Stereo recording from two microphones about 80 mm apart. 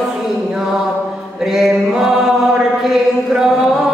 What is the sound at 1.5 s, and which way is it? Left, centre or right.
Mantra, centre.